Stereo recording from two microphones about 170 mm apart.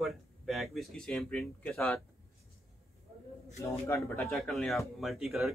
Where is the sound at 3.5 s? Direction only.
15° left (ahead or behind).